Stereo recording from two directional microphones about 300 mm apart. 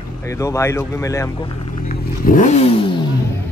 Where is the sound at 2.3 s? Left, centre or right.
Left.